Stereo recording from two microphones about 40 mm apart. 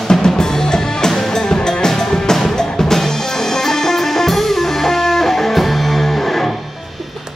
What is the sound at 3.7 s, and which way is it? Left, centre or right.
Music, centre.